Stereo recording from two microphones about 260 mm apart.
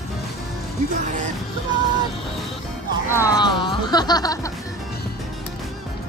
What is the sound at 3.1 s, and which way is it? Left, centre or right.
Speech, centre.